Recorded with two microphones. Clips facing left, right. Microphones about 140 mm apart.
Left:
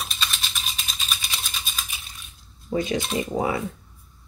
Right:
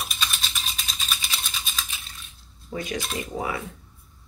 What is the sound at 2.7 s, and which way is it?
Speech, 25° left (ahead or behind).